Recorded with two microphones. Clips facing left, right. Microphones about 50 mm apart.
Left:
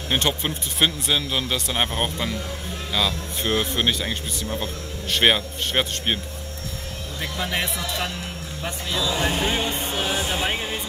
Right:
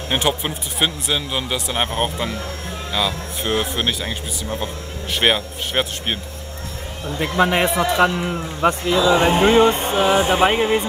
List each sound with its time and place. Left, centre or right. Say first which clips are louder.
0.1 s speech: right 3 dB; centre
7.3 s a man's voice: right 10 dB; right
7.6 s music: right 10 dB; right
8.0 s speech: right 12 dB; right
9.8 s music: right 9 dB; right
10.5 s speech: right 10 dB; right